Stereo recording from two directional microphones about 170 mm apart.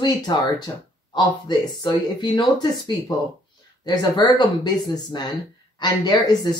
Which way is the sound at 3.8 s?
25° left (ahead or behind).